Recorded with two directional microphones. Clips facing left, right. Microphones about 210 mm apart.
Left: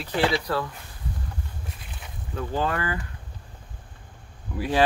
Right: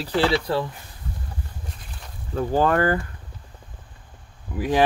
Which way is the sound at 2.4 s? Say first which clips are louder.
Right 7 dB; 45° right (ahead or behind).